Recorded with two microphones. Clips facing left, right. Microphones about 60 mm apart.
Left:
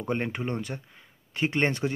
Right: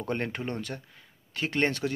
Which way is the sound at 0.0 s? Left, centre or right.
Centre.